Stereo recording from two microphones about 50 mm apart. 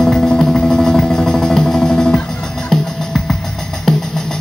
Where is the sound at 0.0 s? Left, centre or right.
Centre.